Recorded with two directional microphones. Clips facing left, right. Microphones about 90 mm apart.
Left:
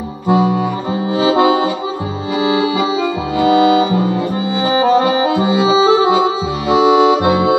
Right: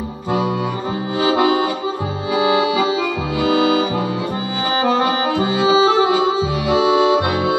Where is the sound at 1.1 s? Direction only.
20° left (ahead or behind).